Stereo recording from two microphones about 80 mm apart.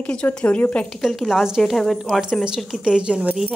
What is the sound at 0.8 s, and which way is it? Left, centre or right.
A woman's voice, centre.